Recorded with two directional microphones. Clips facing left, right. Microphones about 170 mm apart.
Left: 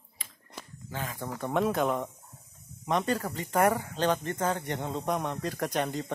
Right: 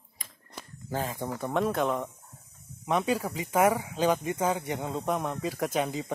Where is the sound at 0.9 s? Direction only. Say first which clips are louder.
Right 5 dB; 35° right (ahead or behind).